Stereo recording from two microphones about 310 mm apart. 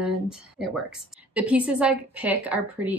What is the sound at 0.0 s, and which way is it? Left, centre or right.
Speech, centre.